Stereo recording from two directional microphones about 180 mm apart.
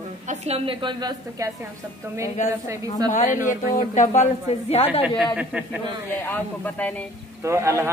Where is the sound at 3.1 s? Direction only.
45° left (ahead or behind).